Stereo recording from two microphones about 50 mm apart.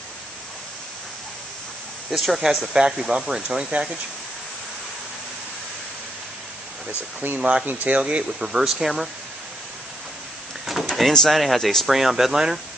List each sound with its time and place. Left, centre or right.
2.0 s speech: centre
2.8 s speech: centre
7.3 s speech: right
7.6 s speech: right
8.0 s speech: centre
10.7 s door: centre
11.2 s speech: centre